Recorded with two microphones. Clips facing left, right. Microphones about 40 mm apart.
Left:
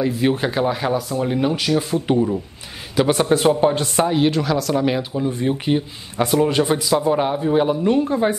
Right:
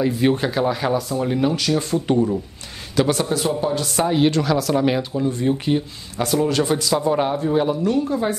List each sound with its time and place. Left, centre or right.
0.0 s speech: centre
0.5 s a woman's voice: centre
3.1 s speech: left
3.3 s speech: left
4.1 s speech: centre
5.3 s speech: centre
6.9 s a woman's voice: centre; by 8.4 s left